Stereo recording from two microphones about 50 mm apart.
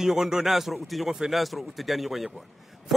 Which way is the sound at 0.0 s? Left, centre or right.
Centre.